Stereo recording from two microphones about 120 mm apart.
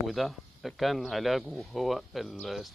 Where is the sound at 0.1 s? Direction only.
Centre (ahead or behind).